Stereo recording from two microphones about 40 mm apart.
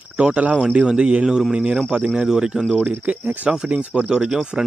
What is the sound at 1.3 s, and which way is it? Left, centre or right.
Speech, centre.